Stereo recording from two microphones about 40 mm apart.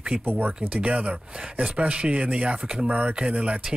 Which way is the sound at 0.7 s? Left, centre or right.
Right.